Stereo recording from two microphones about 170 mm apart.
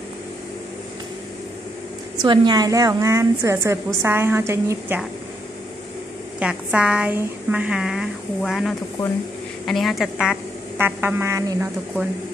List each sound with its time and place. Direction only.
2.2 s a woman's voice: 25° right (ahead or behind)
6.4 s a woman's voice: 5° right (ahead or behind)